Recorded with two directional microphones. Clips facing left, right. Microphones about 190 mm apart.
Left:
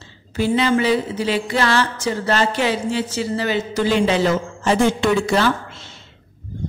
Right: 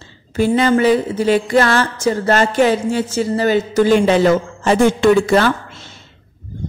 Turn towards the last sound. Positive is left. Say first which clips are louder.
# right 5 dB
turn(degrees=-50)  # may be behind; listen again after turning